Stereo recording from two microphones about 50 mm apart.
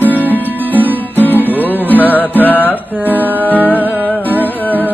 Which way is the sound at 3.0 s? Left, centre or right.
Right.